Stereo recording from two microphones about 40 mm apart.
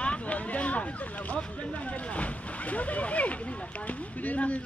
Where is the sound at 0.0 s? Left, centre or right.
Left.